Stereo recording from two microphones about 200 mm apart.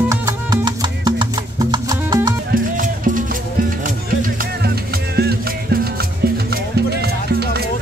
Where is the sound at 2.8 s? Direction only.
40° right (ahead or behind).